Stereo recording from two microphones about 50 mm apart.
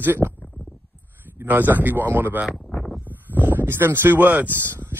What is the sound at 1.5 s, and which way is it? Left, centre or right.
Speech, right.